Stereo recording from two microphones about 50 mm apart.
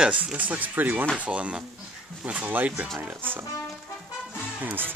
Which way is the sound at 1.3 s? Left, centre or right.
Right.